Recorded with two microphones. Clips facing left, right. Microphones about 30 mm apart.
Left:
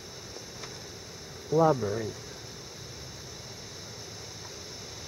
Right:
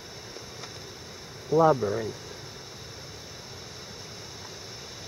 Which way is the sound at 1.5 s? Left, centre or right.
Centre.